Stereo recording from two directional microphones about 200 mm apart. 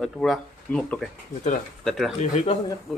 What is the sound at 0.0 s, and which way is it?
Speech, centre (ahead or behind).